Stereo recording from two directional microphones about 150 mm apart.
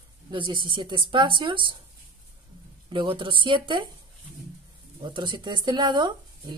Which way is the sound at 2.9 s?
30° right (ahead or behind).